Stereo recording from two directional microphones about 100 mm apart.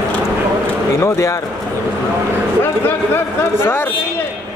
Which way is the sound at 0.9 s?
25° left (ahead or behind).